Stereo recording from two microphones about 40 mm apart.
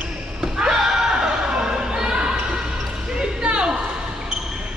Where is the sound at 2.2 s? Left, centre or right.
Right.